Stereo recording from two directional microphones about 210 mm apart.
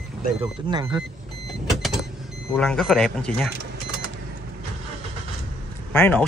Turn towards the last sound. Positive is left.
turn(degrees=5)  # may be behind; listen again after turning